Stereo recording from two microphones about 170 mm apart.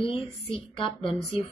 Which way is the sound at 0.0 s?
30° left (ahead or behind).